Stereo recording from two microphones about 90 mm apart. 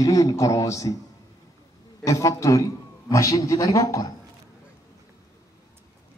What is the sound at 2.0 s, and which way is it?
Speech, 35° left (ahead or behind).